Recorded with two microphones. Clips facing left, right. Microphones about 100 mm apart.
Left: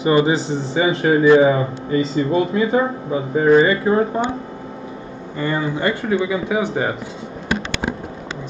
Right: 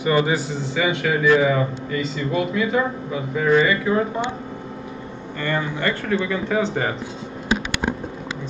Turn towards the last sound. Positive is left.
turn(degrees=10)  # may be behind; listen again after turning